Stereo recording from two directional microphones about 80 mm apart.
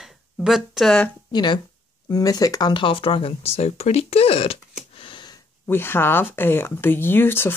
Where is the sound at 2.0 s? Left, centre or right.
Left.